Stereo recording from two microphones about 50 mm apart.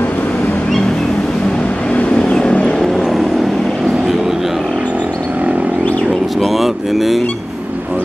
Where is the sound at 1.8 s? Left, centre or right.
Left.